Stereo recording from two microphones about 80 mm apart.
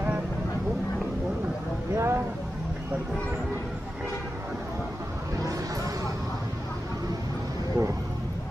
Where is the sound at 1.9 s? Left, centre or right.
Right.